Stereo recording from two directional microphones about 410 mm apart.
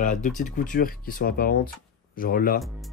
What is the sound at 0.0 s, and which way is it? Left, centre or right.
Speech, centre.